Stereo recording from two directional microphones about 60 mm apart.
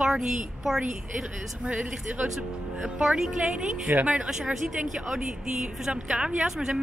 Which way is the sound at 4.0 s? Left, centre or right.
Right.